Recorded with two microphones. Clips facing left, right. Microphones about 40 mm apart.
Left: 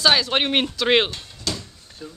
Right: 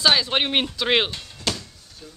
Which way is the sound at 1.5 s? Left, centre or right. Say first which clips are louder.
Right 2 dB; right.